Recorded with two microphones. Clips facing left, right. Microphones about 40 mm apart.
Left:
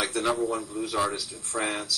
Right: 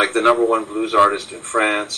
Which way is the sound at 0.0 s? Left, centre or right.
Right.